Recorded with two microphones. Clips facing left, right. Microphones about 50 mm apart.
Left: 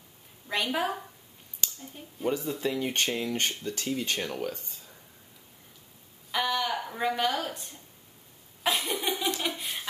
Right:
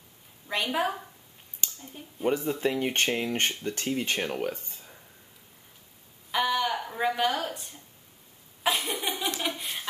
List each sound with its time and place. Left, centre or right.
0.5 s a woman's voice: centre
2.2 s speech: right
6.3 s speech: centre
8.6 s a sound: centre